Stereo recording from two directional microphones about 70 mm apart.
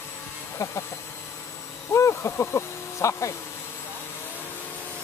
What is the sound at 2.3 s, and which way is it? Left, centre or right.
Speech, left.